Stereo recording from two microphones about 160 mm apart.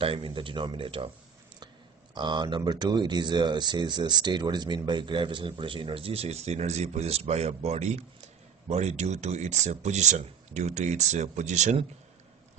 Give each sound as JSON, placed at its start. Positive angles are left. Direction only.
{"t": 0.0, "sound": "speech", "side_deg": -35}
{"t": 2.1, "sound": "speech", "side_deg": -25}